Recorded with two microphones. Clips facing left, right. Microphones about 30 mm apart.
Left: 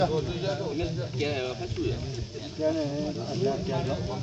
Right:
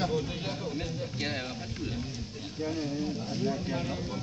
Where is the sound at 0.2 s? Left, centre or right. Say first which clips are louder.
Left 4 dB; centre.